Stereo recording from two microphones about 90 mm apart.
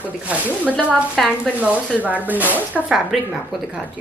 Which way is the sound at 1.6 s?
15° right (ahead or behind).